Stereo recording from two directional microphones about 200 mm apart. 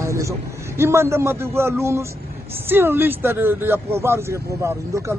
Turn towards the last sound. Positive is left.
turn(degrees=-15)  # may be behind; listen again after turning